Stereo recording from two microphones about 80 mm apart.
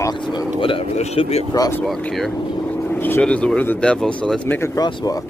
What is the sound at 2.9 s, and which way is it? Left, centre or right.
Vehicle, left.